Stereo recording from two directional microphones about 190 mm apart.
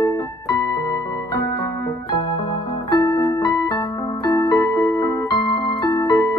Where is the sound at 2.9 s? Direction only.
20° left (ahead or behind).